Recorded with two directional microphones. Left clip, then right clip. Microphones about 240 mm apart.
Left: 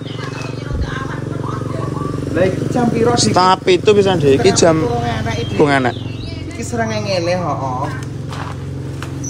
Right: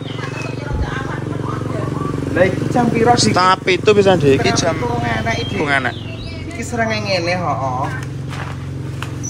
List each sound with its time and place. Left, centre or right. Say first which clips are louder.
2.3 s speech: right 1 dB; centre
3.3 s a man's voice: left 2 dB; centre
4.5 s speech: left 5 dB; left
5.0 s speech: right 2 dB; centre
5.6 s speech: left 5 dB; left
6.7 s a man's voice: even; centre